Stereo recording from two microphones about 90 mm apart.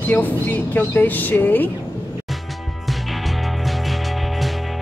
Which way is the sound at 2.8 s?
Centre (ahead or behind).